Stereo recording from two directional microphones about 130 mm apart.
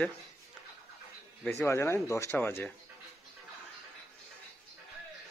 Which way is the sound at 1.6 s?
20° left (ahead or behind).